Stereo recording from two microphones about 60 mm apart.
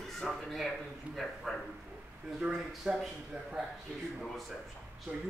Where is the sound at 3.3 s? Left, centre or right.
Right.